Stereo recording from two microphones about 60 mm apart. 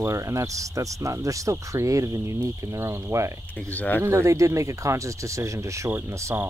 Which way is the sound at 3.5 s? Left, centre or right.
Left.